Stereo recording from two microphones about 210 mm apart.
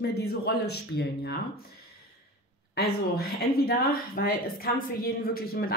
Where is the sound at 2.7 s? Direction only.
50° left (ahead or behind).